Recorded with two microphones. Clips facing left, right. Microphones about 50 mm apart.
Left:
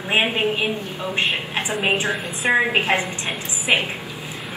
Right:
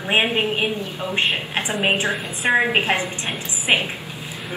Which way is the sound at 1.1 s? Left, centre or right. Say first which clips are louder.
Right 1 dB; right.